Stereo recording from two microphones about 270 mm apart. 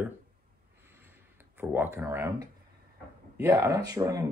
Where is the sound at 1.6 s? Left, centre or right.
Centre.